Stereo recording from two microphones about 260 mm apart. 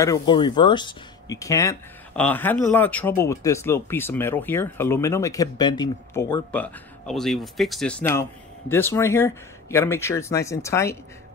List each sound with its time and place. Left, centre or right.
0.0 s speech: centre